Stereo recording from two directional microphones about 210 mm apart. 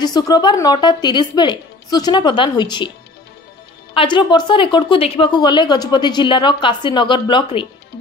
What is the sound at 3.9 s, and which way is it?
A woman's voice, 25° left (ahead or behind).